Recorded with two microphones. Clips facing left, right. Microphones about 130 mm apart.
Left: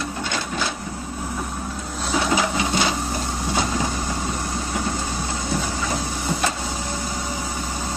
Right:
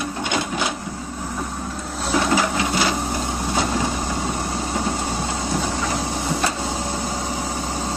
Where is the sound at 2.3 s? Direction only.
20° left (ahead or behind).